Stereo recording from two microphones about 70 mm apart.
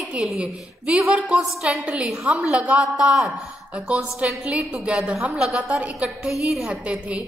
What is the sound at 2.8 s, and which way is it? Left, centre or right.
A woman's voice, centre.